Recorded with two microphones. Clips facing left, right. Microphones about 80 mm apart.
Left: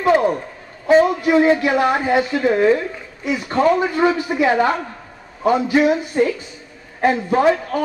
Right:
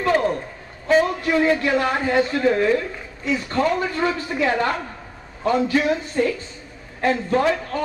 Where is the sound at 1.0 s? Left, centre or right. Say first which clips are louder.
Left 5 dB; centre.